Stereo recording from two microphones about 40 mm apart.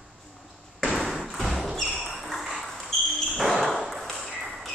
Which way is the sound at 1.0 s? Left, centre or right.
Centre.